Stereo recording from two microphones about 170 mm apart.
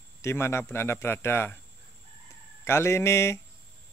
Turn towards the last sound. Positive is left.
turn(degrees=15)  # may be behind; listen again after turning